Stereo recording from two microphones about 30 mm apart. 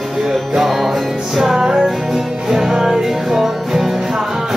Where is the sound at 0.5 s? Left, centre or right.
Centre.